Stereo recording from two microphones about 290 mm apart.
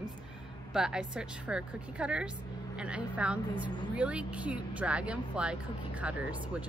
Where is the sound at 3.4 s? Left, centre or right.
Centre.